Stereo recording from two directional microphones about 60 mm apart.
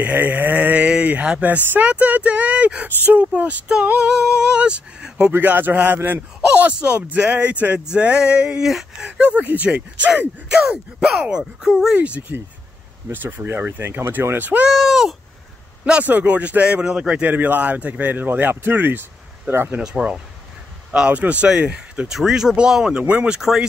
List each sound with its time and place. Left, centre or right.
0.0 s speech: right
5.4 s speech: right
5.9 s speech: right
6.5 s speech: right; by 9.1 s centre
9.2 s speech: right
10.6 s speech: centre
13.1 s speech: right
14.7 s speech: centre
15.8 s speech: right
16.6 s speech: centre
17.2 s speech: right
19.8 s speech: centre